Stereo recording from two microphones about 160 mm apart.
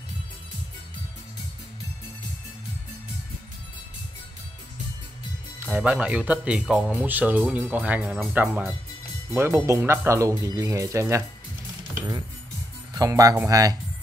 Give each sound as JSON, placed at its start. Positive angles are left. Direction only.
{"t": 5.7, "sound": "speech", "side_deg": -5}
{"t": 12.9, "sound": "speech", "side_deg": -20}